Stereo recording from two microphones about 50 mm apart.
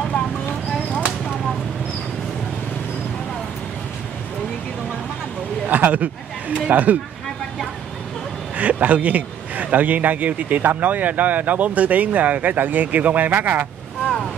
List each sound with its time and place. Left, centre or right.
5.7 s a sound: right
6.7 s speech: right
8.5 s speech: right